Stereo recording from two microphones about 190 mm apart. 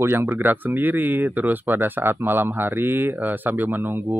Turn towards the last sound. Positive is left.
turn(degrees=-10)  # may be behind; listen again after turning